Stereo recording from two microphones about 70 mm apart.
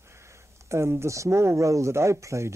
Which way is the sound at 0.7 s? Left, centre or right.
Right.